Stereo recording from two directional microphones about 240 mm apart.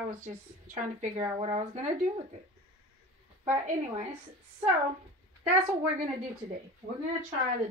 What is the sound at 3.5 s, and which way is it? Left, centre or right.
Speech, right.